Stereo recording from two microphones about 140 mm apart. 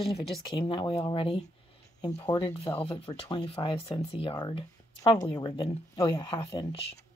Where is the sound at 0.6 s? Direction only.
35° left (ahead or behind).